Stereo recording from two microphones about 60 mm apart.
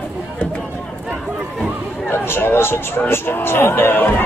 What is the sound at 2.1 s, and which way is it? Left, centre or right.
Speech, left.